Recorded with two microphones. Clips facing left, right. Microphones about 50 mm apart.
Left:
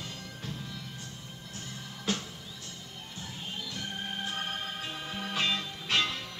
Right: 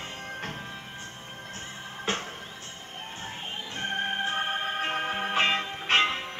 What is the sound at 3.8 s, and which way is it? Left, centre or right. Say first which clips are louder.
Music: right 10 dB; right.